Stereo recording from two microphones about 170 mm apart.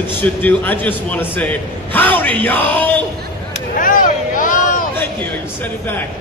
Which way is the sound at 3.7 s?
55° left (ahead or behind).